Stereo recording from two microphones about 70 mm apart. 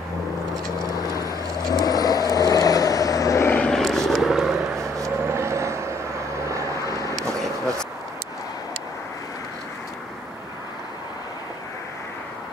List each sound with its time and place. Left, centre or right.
0.9 s vehicle: left
3.4 s vehicle: left
3.7 s vehicle: centre
4.7 s vehicle: right
6.9 s vehicle: left